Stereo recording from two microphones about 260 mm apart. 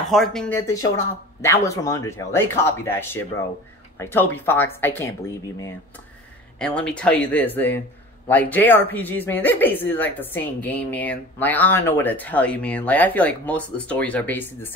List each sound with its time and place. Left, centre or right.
0.1 s speech: centre
6.6 s speech: centre